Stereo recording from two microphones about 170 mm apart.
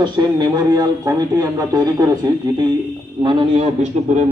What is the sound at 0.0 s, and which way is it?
A man's voice, 25° right (ahead or behind).